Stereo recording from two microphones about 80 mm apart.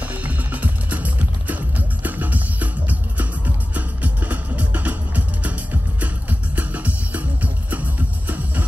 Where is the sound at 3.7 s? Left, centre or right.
Centre.